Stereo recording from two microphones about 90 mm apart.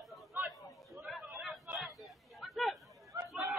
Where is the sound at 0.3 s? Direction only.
20° right (ahead or behind).